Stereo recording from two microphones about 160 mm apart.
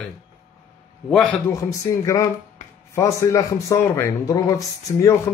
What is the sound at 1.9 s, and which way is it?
Speech, 20° left (ahead or behind).